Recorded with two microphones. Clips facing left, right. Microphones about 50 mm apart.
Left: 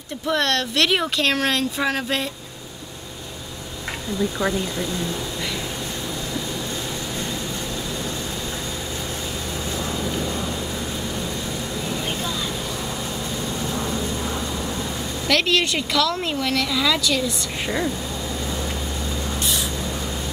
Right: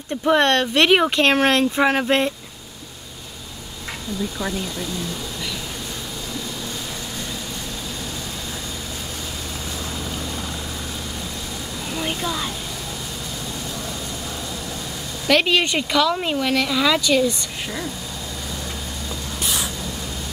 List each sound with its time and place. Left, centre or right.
0.3 s speech: right
4.4 s speech: left
15.2 s speech: centre
17.6 s speech: left